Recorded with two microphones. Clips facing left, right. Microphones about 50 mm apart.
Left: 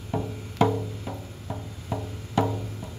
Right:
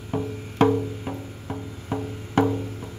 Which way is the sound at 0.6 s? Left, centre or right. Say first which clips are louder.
Right 4 dB; right.